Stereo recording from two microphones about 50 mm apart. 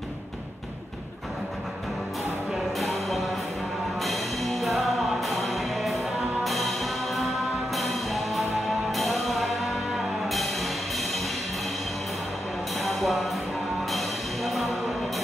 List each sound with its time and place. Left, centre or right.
2.8 s music: centre
12.7 s music: centre